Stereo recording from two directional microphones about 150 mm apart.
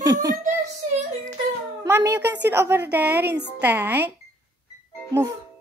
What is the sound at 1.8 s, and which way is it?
A woman's voice, 15° right (ahead or behind).